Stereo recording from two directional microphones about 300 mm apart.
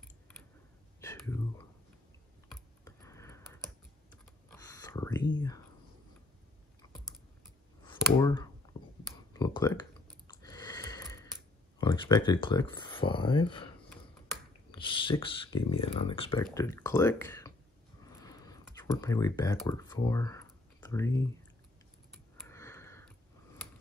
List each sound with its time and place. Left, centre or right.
1.0 s whispering: centre
2.5 s computer keyboard: centre
4.5 s a sound: centre
7.8 s a sound: centre
9.3 s computer keyboard: centre
11.8 s speech: centre
14.7 s speech: centre
18.2 s computer keyboard: centre
22.1 s a sound: centre